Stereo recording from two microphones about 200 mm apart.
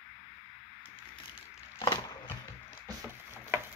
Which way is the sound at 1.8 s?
20° left (ahead or behind).